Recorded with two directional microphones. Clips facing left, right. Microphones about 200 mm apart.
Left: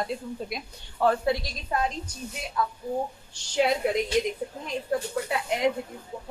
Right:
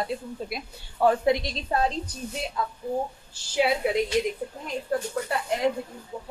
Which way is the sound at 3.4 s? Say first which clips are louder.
Even; 5° right (ahead or behind).